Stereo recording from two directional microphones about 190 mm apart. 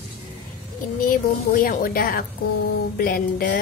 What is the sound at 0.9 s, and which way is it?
Speech, 45° left (ahead or behind).